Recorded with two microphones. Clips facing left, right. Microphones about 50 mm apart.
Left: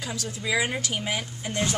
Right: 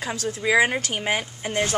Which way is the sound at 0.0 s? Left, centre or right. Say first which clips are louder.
Right 6 dB; right.